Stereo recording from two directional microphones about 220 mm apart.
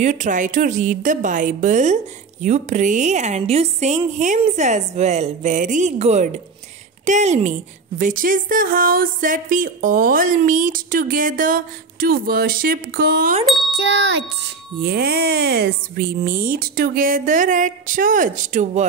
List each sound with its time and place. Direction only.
0.0 s speech: 35° right (ahead or behind)
14.8 s speech: 45° right (ahead or behind)